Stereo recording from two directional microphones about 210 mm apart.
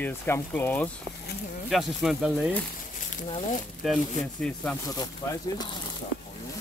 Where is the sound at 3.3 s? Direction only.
35° left (ahead or behind).